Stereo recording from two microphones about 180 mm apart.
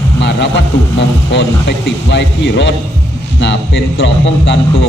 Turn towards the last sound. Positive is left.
turn(degrees=80)